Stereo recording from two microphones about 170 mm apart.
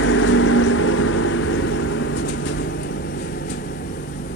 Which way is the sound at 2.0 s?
90° left.